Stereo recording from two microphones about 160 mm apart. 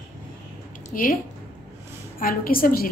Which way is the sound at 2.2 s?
65° left (ahead or behind).